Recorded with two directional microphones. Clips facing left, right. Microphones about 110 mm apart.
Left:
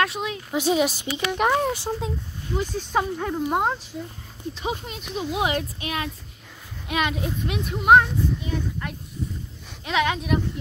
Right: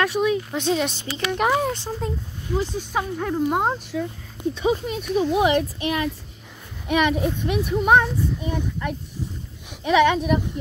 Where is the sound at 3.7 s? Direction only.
60° right (ahead or behind).